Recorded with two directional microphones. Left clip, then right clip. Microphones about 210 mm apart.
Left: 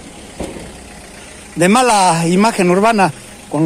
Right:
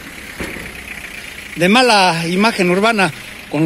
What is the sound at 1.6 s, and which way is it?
A man's voice, 20° left (ahead or behind).